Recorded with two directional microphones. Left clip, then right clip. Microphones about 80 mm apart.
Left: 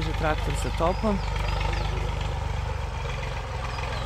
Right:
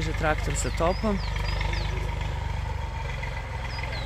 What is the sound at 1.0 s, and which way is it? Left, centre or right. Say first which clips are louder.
Wild animals: left 2 dB; centre.